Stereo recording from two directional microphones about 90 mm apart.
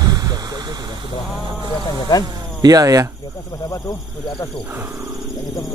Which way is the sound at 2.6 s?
40° right (ahead or behind).